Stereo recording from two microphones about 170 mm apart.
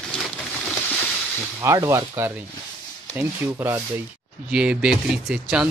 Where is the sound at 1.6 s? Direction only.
15° right (ahead or behind).